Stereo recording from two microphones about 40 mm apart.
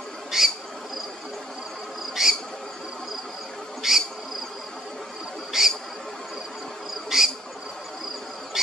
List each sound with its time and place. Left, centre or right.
0.3 s insect: centre
2.2 s insect: centre
3.8 s insect: centre
5.5 s cricket: centre
7.1 s cricket: centre